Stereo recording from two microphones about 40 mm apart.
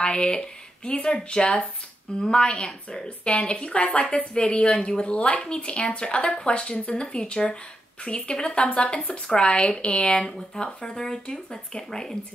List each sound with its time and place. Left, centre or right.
0.0 s a woman's voice: left
8.6 s a woman's voice: left
10.2 s speech: centre